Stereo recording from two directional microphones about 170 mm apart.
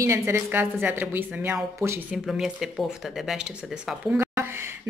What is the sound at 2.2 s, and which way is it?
Speech, centre (ahead or behind).